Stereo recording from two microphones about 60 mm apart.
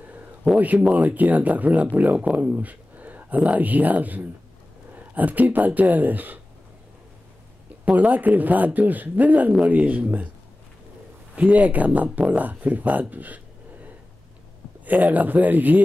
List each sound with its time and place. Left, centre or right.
0.6 s speech: right
7.8 s speech: right
11.3 s speech: right
14.9 s speech: right